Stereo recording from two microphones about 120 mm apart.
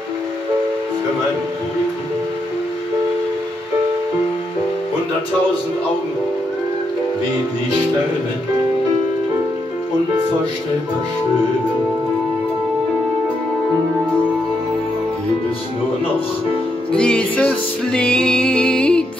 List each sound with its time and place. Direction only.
16.9 s music: 5° left (ahead or behind)